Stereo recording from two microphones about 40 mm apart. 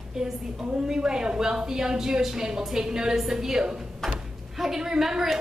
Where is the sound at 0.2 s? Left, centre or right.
Centre.